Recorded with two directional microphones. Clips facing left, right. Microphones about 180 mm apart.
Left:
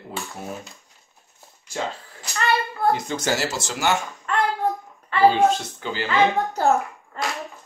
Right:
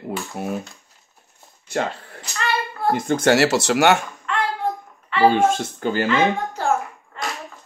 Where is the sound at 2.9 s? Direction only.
55° right (ahead or behind).